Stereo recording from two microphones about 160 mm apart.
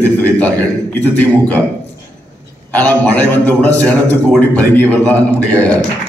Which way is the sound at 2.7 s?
10° left (ahead or behind).